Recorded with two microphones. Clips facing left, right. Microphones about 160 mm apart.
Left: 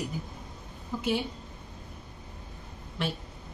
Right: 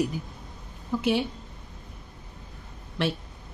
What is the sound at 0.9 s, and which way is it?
Speech, 75° right (ahead or behind).